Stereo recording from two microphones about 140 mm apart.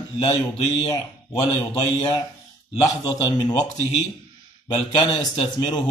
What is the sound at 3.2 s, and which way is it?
Speech, 30° left (ahead or behind).